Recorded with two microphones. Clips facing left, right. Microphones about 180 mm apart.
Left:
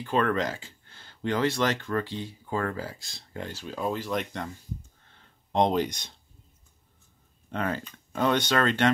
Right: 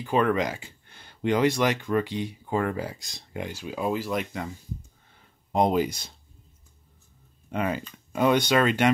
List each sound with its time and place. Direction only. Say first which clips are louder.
0.0 s speech: right 2 dB; 10° right (ahead or behind)
5.1 s a sound: right 1 dB; 5° right (ahead or behind)
7.5 s speech: right 2 dB; 10° right (ahead or behind)